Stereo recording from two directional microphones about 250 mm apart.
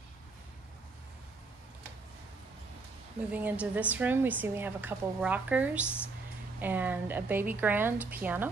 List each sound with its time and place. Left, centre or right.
3.3 s a woman's voice: centre